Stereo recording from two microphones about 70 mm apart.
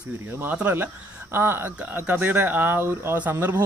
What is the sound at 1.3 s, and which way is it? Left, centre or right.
Speech, right.